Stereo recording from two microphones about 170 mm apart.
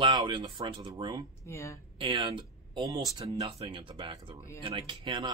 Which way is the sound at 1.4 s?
15° left (ahead or behind).